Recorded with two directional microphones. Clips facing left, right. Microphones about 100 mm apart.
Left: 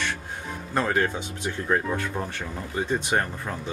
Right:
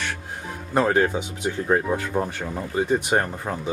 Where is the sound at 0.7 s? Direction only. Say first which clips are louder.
Right 5 dB; 15° right (ahead or behind).